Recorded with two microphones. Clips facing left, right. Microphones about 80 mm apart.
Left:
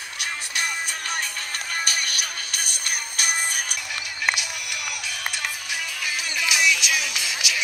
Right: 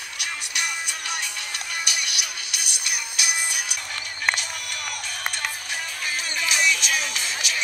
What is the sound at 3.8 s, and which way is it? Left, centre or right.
Music, right.